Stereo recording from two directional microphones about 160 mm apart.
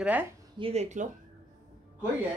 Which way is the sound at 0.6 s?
45° right (ahead or behind).